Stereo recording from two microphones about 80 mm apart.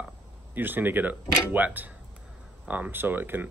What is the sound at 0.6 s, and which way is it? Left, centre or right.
Speech, right.